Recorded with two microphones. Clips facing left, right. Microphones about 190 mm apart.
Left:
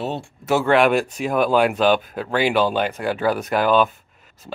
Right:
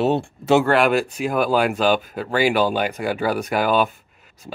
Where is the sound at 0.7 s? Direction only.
Centre (ahead or behind).